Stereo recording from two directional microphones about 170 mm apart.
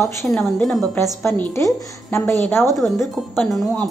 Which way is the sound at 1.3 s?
15° left (ahead or behind).